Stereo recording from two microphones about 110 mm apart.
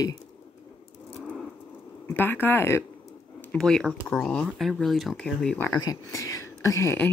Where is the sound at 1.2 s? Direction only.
5° left (ahead or behind).